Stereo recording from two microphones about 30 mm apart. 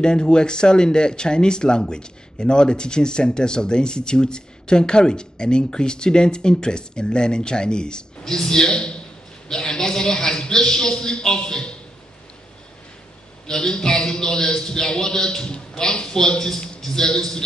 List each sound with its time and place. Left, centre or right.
0.0 s speech: left
8.2 s speech: centre
13.5 s a man's voice: left
16.8 s a man's voice: centre